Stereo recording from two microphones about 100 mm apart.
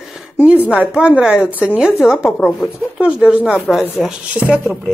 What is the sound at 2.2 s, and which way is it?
Speech, 20° left (ahead or behind).